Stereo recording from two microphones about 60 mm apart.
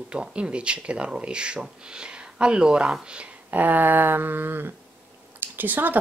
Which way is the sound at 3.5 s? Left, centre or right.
Right.